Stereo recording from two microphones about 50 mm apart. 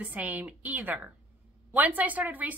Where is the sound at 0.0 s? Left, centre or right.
Right.